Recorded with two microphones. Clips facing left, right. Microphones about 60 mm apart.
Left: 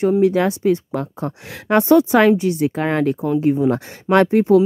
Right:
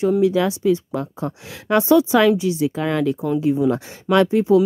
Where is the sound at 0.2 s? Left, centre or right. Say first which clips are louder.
Left 2 dB; left.